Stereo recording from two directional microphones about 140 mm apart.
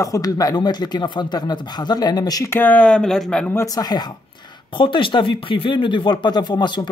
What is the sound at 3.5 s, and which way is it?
Speech, 20° left (ahead or behind).